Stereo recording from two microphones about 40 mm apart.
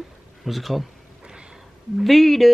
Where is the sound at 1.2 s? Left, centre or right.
Right.